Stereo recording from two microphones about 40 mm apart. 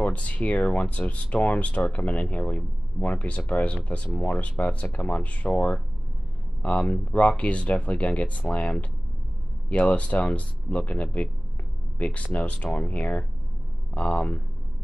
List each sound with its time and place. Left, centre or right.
0.0 s speech: left